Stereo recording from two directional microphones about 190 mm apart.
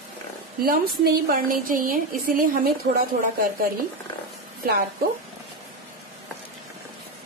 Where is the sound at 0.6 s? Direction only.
50° right (ahead or behind).